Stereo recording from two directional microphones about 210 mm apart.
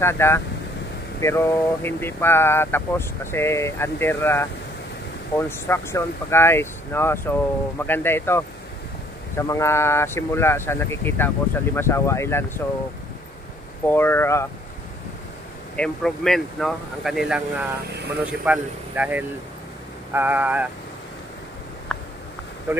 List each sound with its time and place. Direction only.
0.0 s speech: 10° left (ahead or behind)
5.5 s speech: 10° left (ahead or behind)
9.5 s speech: 15° left (ahead or behind)
13.8 s speech: 10° left (ahead or behind)
15.7 s speech: 5° left (ahead or behind)
21.9 s a sound: 5° left (ahead or behind)
22.7 s speech: 10° right (ahead or behind)